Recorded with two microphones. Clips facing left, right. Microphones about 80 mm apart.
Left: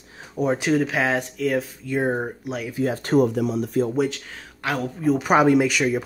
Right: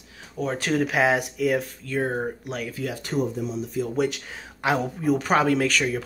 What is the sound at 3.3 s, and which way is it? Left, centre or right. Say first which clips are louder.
Speech: left 6 dB; left.